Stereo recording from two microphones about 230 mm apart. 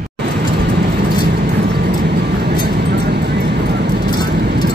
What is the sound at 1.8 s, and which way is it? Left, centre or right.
Vehicle, right.